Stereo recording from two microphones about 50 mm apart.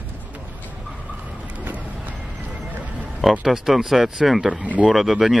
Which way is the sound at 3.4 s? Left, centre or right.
Centre.